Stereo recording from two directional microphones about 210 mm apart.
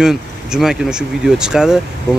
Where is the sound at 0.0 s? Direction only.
Centre (ahead or behind).